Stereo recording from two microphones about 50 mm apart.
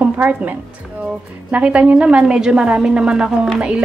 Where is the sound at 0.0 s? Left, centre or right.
Right.